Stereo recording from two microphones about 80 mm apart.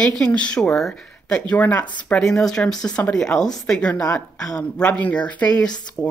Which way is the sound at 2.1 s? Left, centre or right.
Centre.